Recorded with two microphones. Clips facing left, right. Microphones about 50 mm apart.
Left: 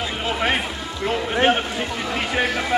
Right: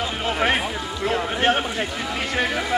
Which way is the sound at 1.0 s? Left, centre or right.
Centre.